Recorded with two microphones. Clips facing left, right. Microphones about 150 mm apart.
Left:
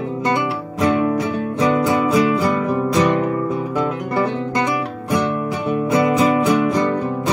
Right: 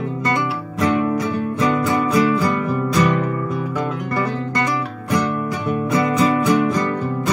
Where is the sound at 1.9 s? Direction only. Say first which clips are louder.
Left 1 dB; 20° left (ahead or behind).